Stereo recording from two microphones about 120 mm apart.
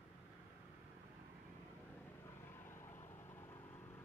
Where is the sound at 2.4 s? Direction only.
20° left (ahead or behind).